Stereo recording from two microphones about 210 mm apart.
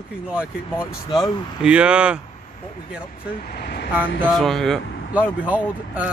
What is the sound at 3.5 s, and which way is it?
Speech, 50° left (ahead or behind).